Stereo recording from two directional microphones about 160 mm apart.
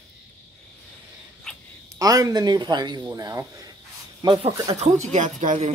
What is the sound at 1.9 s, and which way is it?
A man's voice, 20° right (ahead or behind).